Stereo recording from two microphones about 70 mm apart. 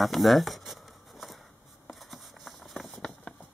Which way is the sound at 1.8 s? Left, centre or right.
Centre.